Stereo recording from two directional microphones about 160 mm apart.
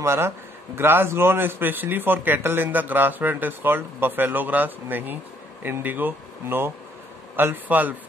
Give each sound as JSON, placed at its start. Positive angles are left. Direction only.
{"t": 0.0, "sound": "speech", "side_deg": -15}